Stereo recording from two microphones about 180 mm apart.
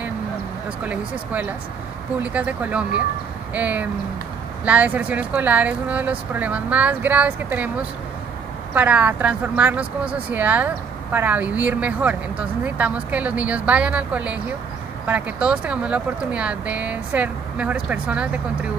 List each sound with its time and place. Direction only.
0.8 s speech: 10° right (ahead or behind)
8.7 s speech: 10° right (ahead or behind)